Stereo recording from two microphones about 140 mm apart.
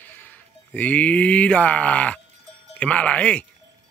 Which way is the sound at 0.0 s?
10° left (ahead or behind).